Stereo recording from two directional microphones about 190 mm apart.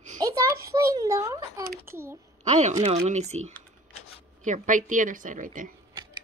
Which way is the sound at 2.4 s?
35° right (ahead or behind).